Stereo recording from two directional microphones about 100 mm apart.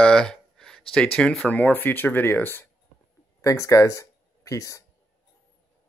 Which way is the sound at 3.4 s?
30° left (ahead or behind).